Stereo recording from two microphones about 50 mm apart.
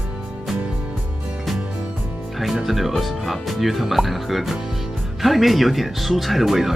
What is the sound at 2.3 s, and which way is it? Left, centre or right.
Speech, centre.